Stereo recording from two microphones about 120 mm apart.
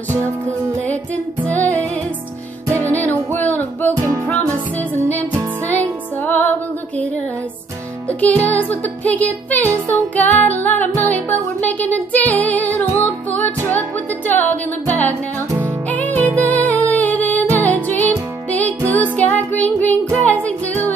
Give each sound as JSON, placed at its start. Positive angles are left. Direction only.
{"t": 0.8, "sound": "music", "side_deg": 15}
{"t": 3.9, "sound": "music", "side_deg": -25}
{"t": 5.7, "sound": "music", "side_deg": 15}
{"t": 8.2, "sound": "music", "side_deg": 15}